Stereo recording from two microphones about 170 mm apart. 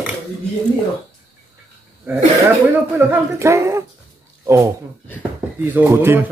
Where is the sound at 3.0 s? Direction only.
15° right (ahead or behind).